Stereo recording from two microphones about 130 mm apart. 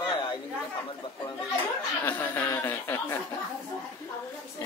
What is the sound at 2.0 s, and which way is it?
Speech, 15° left (ahead or behind).